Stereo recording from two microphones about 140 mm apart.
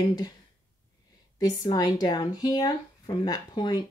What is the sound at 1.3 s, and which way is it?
Speech, 30° left (ahead or behind).